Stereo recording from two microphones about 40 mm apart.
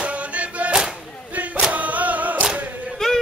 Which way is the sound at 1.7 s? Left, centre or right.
Right.